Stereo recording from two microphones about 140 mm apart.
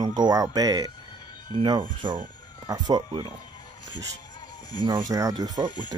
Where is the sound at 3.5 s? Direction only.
30° left (ahead or behind).